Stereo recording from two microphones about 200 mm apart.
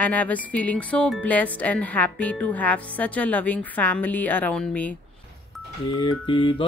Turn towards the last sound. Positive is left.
turn(degrees=25)  # may be behind; listen again after turning